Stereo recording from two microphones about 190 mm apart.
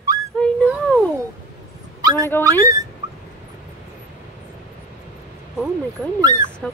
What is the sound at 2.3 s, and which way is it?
Speech, 10° left (ahead or behind).